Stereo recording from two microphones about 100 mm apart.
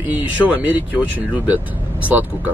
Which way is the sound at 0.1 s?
15° right (ahead or behind).